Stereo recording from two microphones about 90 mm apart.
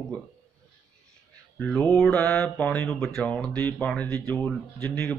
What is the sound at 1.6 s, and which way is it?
Speech, 5° left (ahead or behind).